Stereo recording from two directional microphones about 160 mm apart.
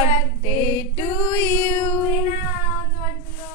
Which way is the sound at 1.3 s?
15° left (ahead or behind).